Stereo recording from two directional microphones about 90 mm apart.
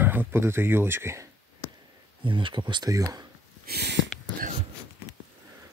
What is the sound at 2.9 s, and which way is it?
Speech, 40° right (ahead or behind).